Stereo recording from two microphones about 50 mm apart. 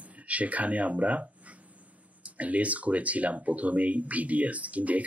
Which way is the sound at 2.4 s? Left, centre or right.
Right.